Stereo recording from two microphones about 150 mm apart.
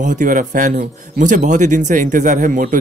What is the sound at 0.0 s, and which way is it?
Speech, 55° right (ahead or behind).